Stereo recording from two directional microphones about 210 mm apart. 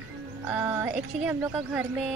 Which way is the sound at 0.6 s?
10° right (ahead or behind).